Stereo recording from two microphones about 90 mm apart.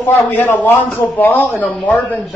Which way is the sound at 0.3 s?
20° left (ahead or behind).